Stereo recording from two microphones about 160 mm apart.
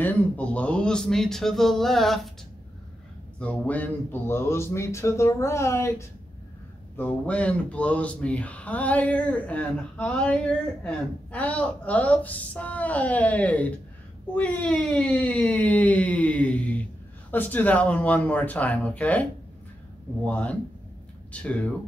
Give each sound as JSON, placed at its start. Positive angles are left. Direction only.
{"t": 0.0, "sound": "speech", "side_deg": 10}
{"t": 3.3, "sound": "speech", "side_deg": 10}
{"t": 20.2, "sound": "speech", "side_deg": 10}